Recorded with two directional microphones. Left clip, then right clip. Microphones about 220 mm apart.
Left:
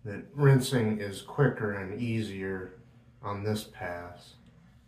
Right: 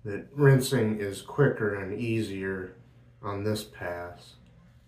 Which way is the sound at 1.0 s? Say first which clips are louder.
Right 3 dB; 5° right (ahead or behind).